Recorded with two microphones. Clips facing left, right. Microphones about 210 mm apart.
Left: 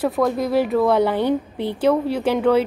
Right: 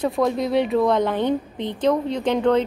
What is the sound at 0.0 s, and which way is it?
A woman's voice, centre (ahead or behind).